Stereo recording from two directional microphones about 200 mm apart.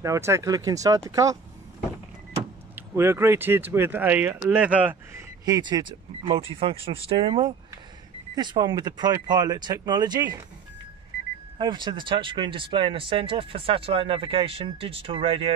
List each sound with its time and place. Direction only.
0.0 s speech: 15° right (ahead or behind)
2.7 s speech: 10° right (ahead or behind)
5.4 s speech: 20° right (ahead or behind)
11.5 s speech: 20° right (ahead or behind)